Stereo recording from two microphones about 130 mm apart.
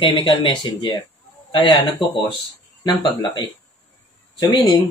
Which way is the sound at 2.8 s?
30° left (ahead or behind).